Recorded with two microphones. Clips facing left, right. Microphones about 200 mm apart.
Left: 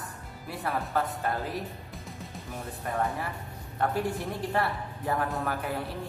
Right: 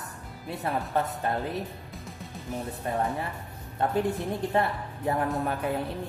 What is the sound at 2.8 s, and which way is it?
A woman's voice, 25° right (ahead or behind).